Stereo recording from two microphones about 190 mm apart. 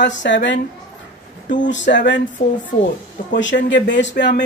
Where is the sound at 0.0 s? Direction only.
70° left (ahead or behind).